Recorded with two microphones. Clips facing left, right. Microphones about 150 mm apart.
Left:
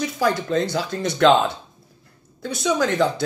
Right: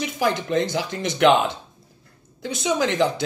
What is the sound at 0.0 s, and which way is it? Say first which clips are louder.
A man's voice: left 1 dB; 20° right (ahead or behind).